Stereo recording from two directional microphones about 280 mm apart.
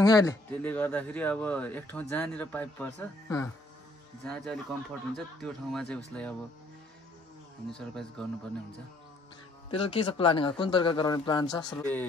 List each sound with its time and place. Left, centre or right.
0.0 s a man's voice: centre
7.7 s a man's voice: centre
9.7 s a man's voice: centre